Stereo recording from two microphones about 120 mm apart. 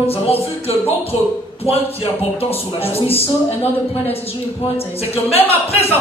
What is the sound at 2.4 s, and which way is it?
Speech, 55° left (ahead or behind).